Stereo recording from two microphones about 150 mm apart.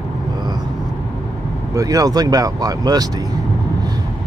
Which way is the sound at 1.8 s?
25° right (ahead or behind).